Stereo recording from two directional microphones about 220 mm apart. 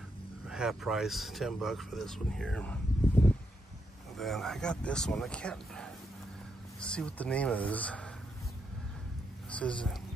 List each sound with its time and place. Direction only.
0.5 s speech: centre (ahead or behind)
9.5 s speech: 5° left (ahead or behind)